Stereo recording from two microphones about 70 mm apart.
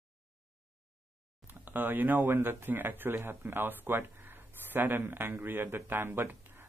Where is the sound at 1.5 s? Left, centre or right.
Right.